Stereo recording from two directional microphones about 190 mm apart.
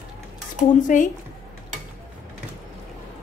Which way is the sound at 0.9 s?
45° left (ahead or behind).